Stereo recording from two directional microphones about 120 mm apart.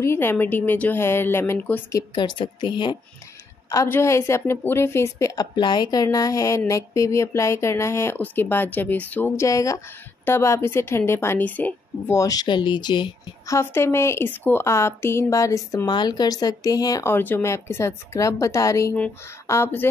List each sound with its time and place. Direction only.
0.0 s speech: 20° left (ahead or behind)
1.9 s a woman's voice: 30° left (ahead or behind)
3.7 s speech: 25° left (ahead or behind)
9.4 s speech: 25° left (ahead or behind)
12.2 s a woman's voice: 30° left (ahead or behind)
13.5 s speech: 20° left (ahead or behind)